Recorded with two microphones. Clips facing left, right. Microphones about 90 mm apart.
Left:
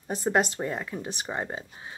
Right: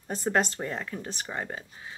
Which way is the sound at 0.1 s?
10° left (ahead or behind).